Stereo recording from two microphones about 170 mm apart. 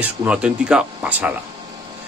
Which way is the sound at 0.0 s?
10° right (ahead or behind).